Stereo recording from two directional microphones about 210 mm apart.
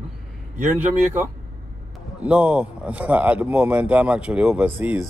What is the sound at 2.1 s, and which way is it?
Speech, 5° right (ahead or behind).